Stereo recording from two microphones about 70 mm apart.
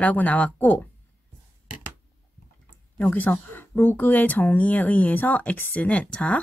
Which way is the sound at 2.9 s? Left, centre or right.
Left.